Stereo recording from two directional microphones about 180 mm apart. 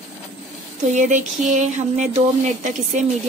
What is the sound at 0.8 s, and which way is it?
A woman's voice, 45° right (ahead or behind).